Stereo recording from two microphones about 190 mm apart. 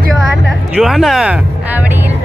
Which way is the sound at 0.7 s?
Centre (ahead or behind).